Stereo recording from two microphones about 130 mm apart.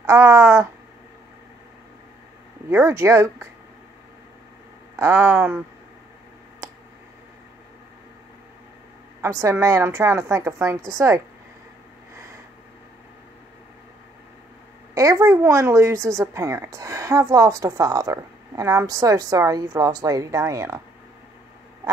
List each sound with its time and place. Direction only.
0.0 s a woman's voice: 20° right (ahead or behind)
2.7 s a woman's voice: 20° right (ahead or behind)
4.9 s a woman's voice: 20° right (ahead or behind)
9.2 s a woman's voice: 20° right (ahead or behind)
15.0 s a woman's voice: 25° right (ahead or behind)